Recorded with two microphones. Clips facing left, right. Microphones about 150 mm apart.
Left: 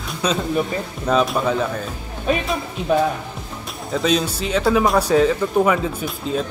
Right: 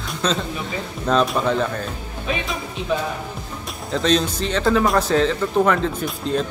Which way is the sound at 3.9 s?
5° left (ahead or behind).